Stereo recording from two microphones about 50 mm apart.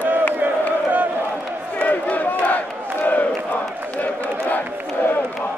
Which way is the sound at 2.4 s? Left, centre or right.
Left.